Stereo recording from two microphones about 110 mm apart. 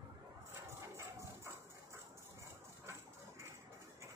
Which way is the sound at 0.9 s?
25° right (ahead or behind).